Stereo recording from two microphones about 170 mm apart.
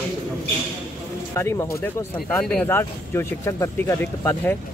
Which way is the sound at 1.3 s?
15° left (ahead or behind).